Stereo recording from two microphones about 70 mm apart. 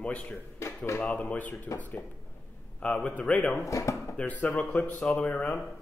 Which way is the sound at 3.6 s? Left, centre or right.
Left.